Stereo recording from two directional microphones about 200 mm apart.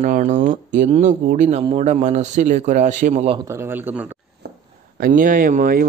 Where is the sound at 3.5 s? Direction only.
10° right (ahead or behind).